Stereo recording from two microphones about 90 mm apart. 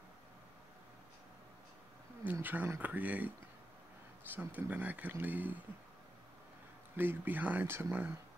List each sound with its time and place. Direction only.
2.4 s speech: 20° right (ahead or behind)
4.3 s speech: 20° right (ahead or behind)
7.0 s speech: 20° right (ahead or behind)